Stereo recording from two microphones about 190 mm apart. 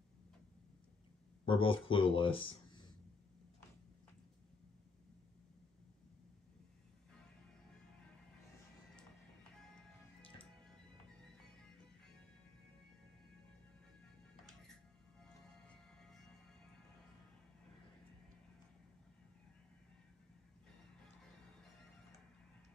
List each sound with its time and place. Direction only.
1.4 s speech: 25° left (ahead or behind)
10.2 s music: 25° left (ahead or behind)
15.7 s music: centre (ahead or behind)